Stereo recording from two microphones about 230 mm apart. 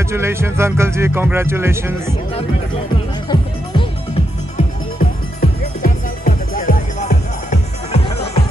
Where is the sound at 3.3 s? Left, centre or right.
Centre.